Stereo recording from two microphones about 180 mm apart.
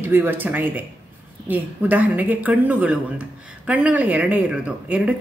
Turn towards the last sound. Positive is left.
turn(degrees=-5)  # may be behind; listen again after turning